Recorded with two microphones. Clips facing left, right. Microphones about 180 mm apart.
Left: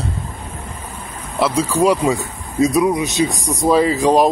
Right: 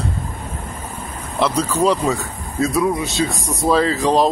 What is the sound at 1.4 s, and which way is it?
Speech, 10° left (ahead or behind).